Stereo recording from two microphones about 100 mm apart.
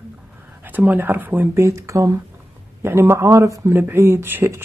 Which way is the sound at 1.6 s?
30° right (ahead or behind).